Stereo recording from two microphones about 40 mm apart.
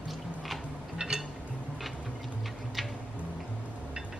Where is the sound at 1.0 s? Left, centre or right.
Right.